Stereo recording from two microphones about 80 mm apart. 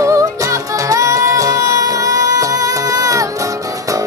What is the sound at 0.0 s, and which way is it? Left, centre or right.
Music, right.